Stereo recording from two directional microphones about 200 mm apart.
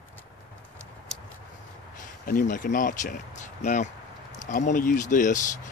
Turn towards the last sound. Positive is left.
turn(degrees=40)  # may be behind; listen again after turning